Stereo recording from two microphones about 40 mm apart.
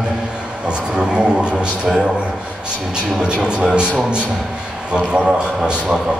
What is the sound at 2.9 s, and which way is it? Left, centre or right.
Speech, centre.